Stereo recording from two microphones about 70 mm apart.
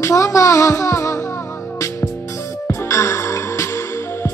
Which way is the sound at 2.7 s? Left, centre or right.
Left.